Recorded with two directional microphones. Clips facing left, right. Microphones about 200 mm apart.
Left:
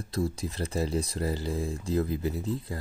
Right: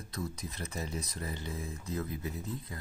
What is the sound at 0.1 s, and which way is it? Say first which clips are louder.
Speech: left 9 dB; 30° left (ahead or behind).